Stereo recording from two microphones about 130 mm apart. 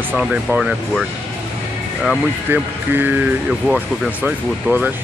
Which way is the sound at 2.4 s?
15° right (ahead or behind).